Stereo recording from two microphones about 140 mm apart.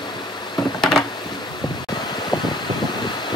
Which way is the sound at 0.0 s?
35° left (ahead or behind).